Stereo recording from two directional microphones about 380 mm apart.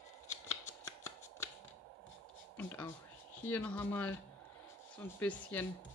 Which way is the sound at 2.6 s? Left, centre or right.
Centre.